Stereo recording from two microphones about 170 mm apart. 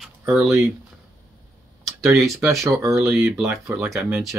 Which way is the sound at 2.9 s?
Centre (ahead or behind).